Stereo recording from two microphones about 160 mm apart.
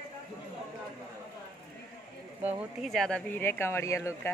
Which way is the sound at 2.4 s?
Centre (ahead or behind).